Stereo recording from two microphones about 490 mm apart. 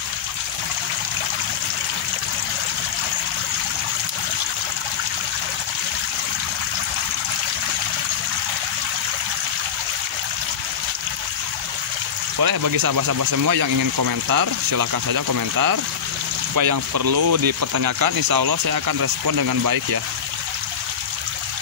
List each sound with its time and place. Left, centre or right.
12.4 s speech: right